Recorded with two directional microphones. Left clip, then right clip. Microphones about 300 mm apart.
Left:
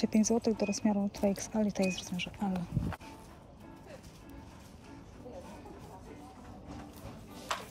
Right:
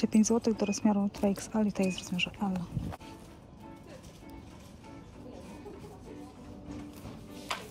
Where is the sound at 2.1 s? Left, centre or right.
Right.